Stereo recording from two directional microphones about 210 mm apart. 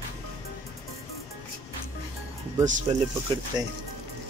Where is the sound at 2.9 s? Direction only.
30° right (ahead or behind).